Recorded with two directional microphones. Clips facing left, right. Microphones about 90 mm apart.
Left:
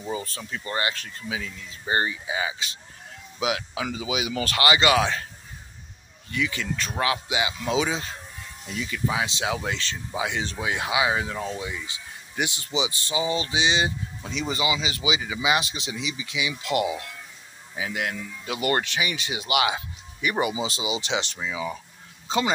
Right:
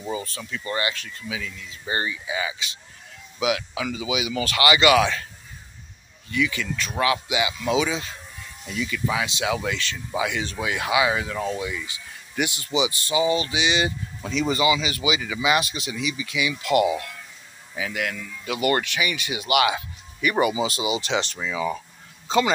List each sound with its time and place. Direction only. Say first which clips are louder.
0.5 s speech: right 1 dB; 35° left (ahead or behind)
6.3 s speech: right 3 dB; 30° left (ahead or behind)
11.3 s speech: right 4 dB; 10° left (ahead or behind)
11.6 s speech: right 3 dB; 25° left (ahead or behind)